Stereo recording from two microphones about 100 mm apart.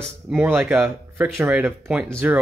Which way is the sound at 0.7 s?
20° right (ahead or behind).